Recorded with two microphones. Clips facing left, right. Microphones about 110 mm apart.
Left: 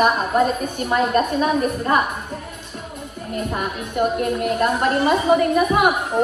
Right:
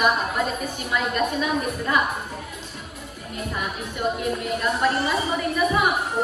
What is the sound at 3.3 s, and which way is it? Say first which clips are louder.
A woman's voice: left 5 dB; 45° left (ahead or behind).